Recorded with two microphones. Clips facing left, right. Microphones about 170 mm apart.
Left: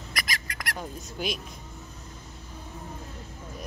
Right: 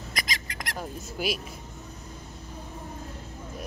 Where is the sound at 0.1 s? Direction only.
20° right (ahead or behind).